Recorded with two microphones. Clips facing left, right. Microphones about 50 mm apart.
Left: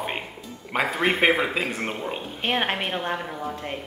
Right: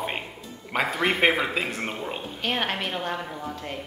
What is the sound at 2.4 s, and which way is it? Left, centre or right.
A woman's voice, left.